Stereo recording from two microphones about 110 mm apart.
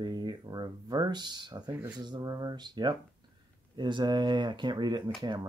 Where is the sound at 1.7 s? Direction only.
20° right (ahead or behind).